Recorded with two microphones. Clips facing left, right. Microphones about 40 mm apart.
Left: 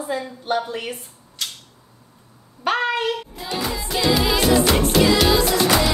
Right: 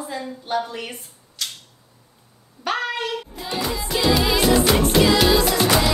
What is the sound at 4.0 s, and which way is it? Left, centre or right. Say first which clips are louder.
Music: even; centre.